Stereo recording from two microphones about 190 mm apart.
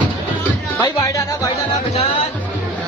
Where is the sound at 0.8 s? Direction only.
20° left (ahead or behind).